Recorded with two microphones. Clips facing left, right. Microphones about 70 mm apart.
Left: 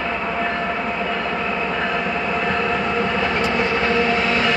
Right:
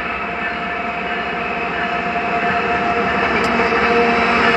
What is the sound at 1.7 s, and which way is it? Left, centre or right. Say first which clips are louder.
Train: right 2 dB; centre.